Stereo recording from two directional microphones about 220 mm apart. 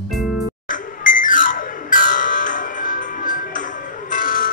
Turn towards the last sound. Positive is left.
turn(degrees=35)  # may be behind; listen again after turning